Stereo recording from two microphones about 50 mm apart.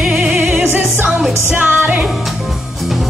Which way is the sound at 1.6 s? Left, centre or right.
Right.